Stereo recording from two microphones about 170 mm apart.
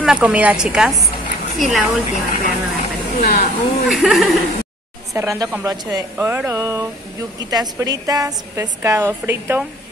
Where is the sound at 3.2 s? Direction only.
60° left (ahead or behind).